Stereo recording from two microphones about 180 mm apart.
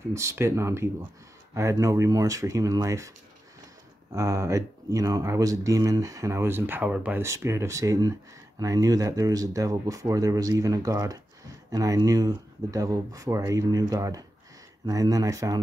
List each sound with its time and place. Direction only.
0.0 s speech: 15° right (ahead or behind)
4.1 s speech: 15° right (ahead or behind)